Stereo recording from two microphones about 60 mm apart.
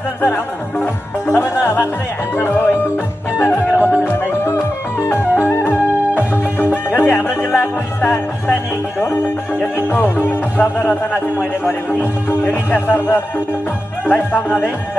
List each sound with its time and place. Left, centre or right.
0.2 s speech: left
1.3 s speech: left
3.3 s music: left
9.6 s speech: left